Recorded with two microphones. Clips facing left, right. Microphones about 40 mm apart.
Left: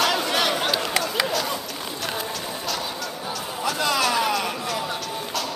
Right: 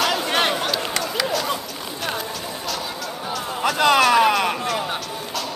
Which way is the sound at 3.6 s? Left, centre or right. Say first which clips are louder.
Right 7 dB; right.